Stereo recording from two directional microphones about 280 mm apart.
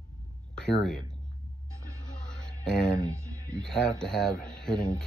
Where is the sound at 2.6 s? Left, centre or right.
Centre.